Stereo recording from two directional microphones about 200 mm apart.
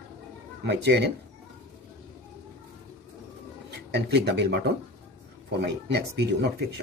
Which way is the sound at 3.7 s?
55° right (ahead or behind).